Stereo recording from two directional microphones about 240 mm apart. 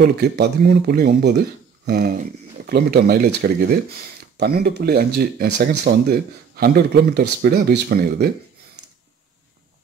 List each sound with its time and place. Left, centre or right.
0.0 s speech: right